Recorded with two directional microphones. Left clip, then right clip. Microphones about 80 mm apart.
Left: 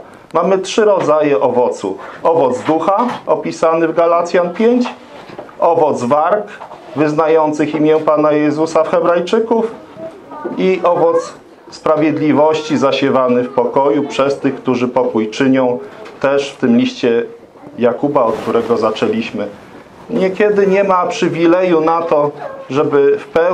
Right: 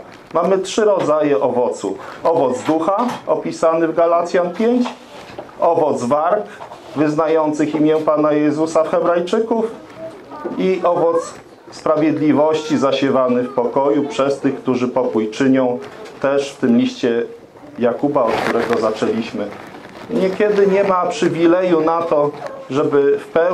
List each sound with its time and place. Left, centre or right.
0.3 s a man's voice: left